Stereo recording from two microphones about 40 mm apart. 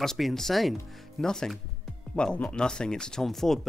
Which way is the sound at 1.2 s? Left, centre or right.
Centre.